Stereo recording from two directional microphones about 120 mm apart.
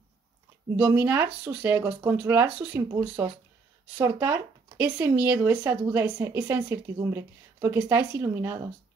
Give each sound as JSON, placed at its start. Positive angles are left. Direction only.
{"t": 0.7, "sound": "a woman's voice", "side_deg": -10}
{"t": 4.0, "sound": "a woman's voice", "side_deg": -20}